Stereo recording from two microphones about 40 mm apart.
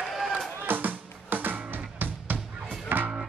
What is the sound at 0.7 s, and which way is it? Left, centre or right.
Music, right.